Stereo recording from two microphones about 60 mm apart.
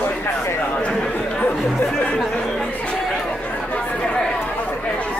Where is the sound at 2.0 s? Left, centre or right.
Centre.